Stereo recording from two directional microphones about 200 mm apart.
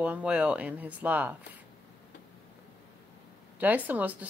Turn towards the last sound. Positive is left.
turn(degrees=-10)  # may be behind; listen again after turning